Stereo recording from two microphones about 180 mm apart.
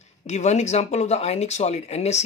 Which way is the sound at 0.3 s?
40° left (ahead or behind).